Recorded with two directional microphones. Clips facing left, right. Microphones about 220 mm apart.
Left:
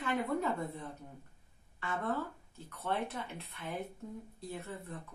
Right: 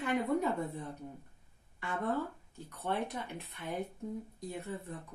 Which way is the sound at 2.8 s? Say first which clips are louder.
Right 1 dB; 15° right (ahead or behind).